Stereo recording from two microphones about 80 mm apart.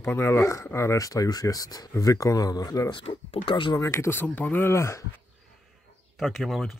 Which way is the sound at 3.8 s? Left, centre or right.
Left.